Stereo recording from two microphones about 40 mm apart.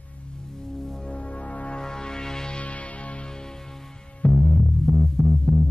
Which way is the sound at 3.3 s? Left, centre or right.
Centre.